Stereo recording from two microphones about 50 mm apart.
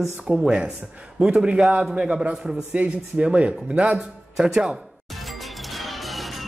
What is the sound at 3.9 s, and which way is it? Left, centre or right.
Speech, centre.